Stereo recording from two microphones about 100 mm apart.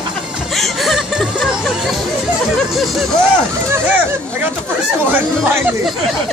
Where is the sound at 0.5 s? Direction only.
Centre (ahead or behind).